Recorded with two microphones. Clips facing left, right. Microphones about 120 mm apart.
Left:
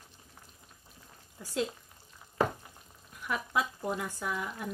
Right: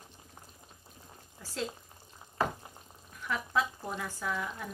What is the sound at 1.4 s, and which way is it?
Speech, 15° left (ahead or behind).